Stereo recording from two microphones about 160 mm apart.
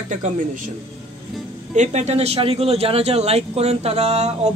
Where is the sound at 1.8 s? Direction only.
45° right (ahead or behind).